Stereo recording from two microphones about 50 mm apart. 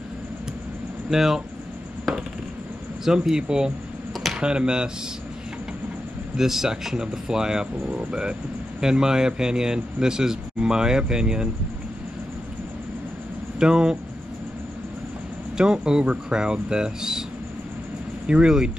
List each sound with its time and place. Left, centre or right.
1.1 s a man's voice: centre
2.1 s a sound: centre
3.1 s a man's voice: centre
6.3 s a man's voice: centre
13.6 s a man's voice: centre
15.5 s a man's voice: centre
18.2 s a man's voice: centre